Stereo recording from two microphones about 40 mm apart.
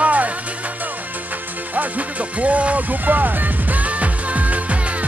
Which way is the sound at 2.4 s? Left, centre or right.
Right.